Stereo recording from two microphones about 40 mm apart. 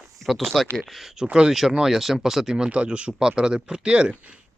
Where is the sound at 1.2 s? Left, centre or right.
Right.